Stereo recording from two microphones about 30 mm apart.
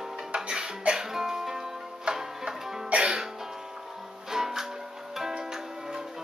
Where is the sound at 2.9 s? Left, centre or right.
Right.